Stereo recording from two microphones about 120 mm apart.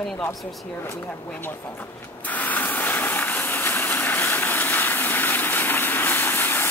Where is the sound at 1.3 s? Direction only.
15° left (ahead or behind).